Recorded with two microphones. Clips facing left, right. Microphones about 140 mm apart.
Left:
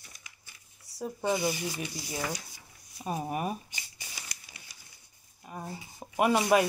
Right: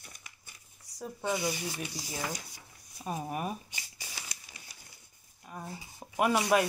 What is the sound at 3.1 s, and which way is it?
Speech, 10° left (ahead or behind).